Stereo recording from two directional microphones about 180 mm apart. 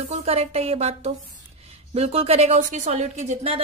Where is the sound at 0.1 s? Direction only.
35° right (ahead or behind).